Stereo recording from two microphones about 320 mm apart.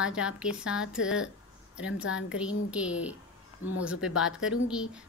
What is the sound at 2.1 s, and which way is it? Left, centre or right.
A woman's voice, centre.